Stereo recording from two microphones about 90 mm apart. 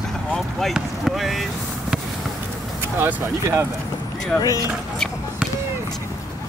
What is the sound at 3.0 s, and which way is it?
Speech, 25° right (ahead or behind).